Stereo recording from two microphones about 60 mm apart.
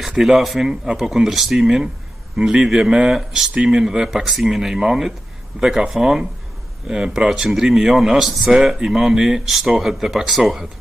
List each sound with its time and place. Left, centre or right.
0.2 s speech: centre